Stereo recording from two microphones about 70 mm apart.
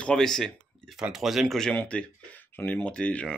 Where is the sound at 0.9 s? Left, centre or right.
Centre.